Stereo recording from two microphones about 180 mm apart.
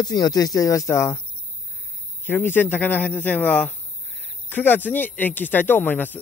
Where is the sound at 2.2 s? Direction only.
10° left (ahead or behind).